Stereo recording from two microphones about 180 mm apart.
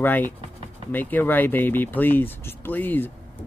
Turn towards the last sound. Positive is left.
turn(degrees=10)  # may be behind; listen again after turning